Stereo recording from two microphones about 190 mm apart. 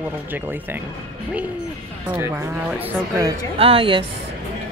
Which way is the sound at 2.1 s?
15° right (ahead or behind).